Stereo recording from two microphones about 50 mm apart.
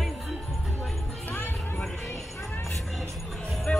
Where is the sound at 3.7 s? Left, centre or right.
Left.